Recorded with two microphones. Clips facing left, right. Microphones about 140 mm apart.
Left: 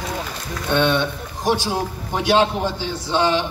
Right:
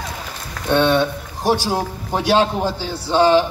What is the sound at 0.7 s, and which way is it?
A man's voice, 35° right (ahead or behind).